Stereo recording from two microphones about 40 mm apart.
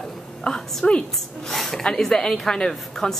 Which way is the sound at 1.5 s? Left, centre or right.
Centre.